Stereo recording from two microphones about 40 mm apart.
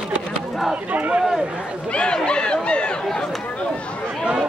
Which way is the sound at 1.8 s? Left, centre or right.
Left.